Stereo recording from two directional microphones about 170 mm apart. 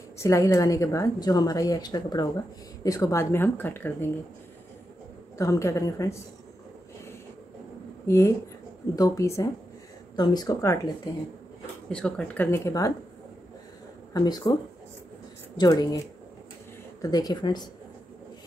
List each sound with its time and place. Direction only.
0.2 s a woman's voice: 20° left (ahead or behind)
5.4 s speech: 20° left (ahead or behind)
8.1 s a woman's voice: 15° left (ahead or behind)
11.9 s speech: 5° left (ahead or behind)
14.1 s a woman's voice: 25° left (ahead or behind)
17.0 s a woman's voice: 20° left (ahead or behind)